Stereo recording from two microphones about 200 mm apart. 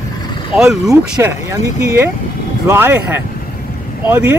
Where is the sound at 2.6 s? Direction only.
10° right (ahead or behind).